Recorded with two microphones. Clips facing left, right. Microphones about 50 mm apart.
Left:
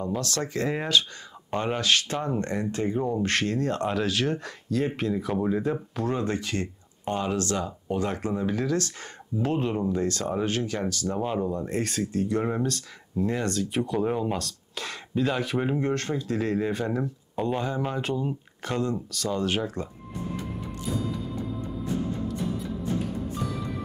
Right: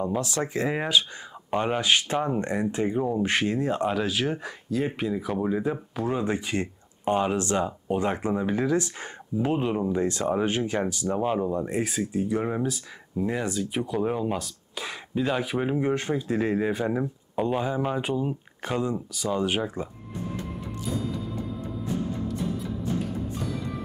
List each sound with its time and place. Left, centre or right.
0.0 s speech: centre
11.1 s speech: centre
23.0 s music: centre